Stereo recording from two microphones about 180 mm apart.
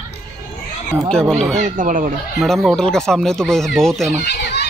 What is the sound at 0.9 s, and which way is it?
Speech, 5° left (ahead or behind).